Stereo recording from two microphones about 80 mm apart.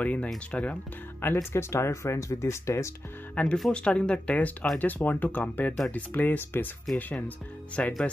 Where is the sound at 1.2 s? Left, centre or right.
Left.